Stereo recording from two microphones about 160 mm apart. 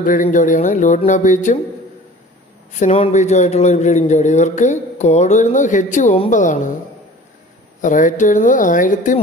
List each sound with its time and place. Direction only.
0.0 s a man's voice: 55° left (ahead or behind)
2.8 s a man's voice: 45° left (ahead or behind)
7.8 s a man's voice: 55° left (ahead or behind)